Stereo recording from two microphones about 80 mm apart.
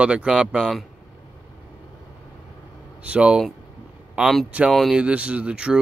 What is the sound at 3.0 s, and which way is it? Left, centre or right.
Speech, centre.